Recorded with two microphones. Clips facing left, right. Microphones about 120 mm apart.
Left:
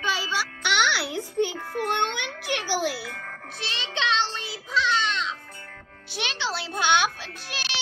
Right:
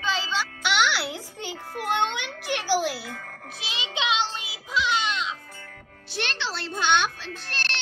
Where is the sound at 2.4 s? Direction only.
Centre (ahead or behind).